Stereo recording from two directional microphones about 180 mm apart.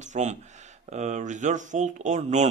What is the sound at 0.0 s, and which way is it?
Speech, 40° right (ahead or behind).